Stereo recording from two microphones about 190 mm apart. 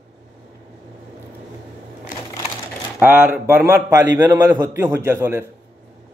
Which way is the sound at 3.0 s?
10° right (ahead or behind).